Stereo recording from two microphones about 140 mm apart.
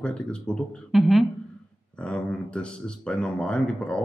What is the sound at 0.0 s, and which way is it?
Speech, 5° left (ahead or behind).